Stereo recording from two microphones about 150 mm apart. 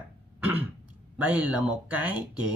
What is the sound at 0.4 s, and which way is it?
Throat clearing, 10° right (ahead or behind).